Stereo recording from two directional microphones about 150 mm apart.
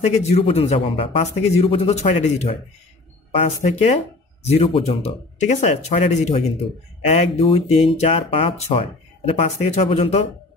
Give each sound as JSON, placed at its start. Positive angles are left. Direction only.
{"t": 0.0, "sound": "a man's voice", "side_deg": 45}